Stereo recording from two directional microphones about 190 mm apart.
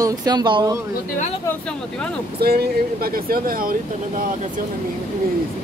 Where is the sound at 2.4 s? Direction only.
55° right (ahead or behind).